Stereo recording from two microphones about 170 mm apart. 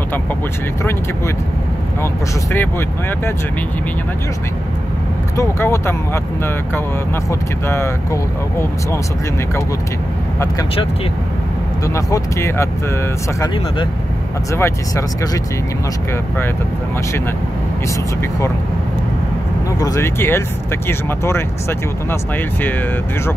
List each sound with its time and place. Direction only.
5.4 s speech: 15° left (ahead or behind)
11.8 s speech: 20° left (ahead or behind)
14.5 s speech: 15° left (ahead or behind)
19.8 s speech: 20° left (ahead or behind)